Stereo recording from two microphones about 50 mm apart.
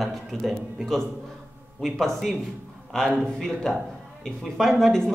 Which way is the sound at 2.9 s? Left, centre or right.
Centre.